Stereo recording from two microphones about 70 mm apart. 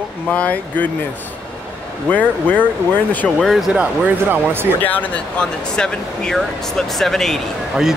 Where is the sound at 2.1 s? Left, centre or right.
Left.